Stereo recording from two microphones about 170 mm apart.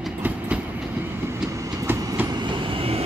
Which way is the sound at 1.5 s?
20° right (ahead or behind).